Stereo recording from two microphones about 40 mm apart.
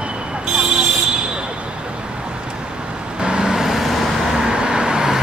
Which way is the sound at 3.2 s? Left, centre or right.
Right.